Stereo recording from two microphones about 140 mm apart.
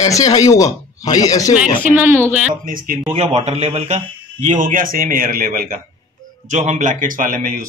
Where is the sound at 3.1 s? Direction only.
50° right (ahead or behind); by 5.8 s 85° right.